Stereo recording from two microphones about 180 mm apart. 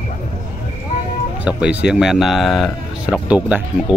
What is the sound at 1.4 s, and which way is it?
Speech, 5° right (ahead or behind).